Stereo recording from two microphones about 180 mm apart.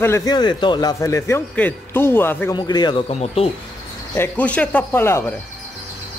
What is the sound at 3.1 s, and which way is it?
Speech, 35° left (ahead or behind).